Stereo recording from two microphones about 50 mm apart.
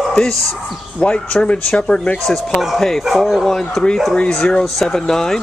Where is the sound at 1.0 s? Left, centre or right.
Left.